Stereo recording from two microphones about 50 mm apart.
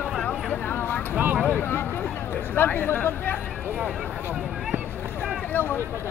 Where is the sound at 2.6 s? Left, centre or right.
Left.